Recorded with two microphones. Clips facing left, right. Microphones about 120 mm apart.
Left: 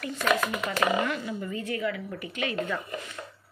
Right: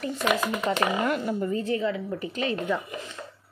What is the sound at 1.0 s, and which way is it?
Speech, 45° right (ahead or behind).